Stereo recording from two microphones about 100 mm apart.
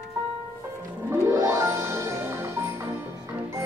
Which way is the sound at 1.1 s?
30° right (ahead or behind).